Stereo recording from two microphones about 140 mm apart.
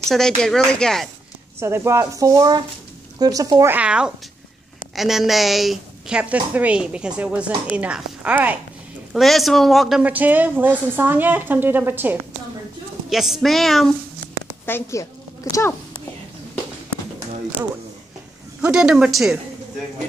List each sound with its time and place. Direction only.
0.4 s speech: 5° left (ahead or behind)
1.6 s speech: 20° right (ahead or behind)
3.7 s speech: 10° right (ahead or behind)
9.1 s speech: centre (ahead or behind)
13.1 s speech: centre (ahead or behind)
14.2 s music: 20° left (ahead or behind)
15.5 s speech: 25° left (ahead or behind)
18.6 s speech: 5° right (ahead or behind)